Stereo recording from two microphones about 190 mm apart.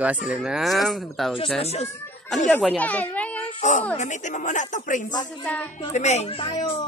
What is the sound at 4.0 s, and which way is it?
Speech, 40° left (ahead or behind).